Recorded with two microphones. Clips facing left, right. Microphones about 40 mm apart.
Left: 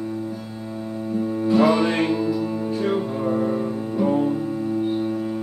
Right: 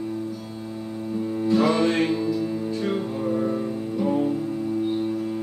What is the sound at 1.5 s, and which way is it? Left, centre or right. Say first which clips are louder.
Music: left 2 dB; centre.